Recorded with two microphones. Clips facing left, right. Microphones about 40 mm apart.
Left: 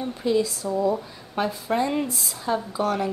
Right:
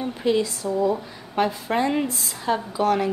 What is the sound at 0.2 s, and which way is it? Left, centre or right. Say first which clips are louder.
A woman's voice: right 1 dB; right.